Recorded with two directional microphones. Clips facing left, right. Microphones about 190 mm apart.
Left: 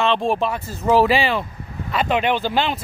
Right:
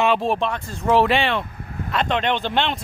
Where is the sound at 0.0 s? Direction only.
5° right (ahead or behind).